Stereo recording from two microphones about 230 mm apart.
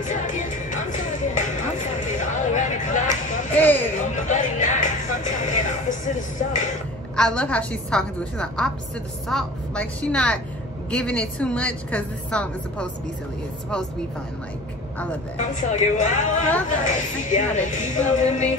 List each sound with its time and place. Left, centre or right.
0.0 s music: left
3.5 s a sound: centre
4.2 s music: left
7.2 s a woman's voice: centre
15.3 s speech: left